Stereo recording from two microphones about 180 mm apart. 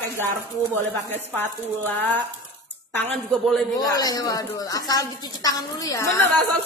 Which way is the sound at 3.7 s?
20° left (ahead or behind).